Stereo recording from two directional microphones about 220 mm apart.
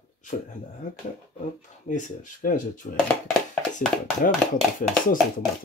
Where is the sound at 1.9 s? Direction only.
35° left (ahead or behind).